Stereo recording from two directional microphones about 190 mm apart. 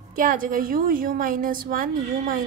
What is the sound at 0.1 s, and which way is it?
A woman's voice, 45° right (ahead or behind).